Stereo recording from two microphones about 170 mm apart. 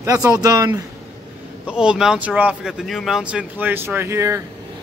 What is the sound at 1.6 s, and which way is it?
Speech, 5° right (ahead or behind).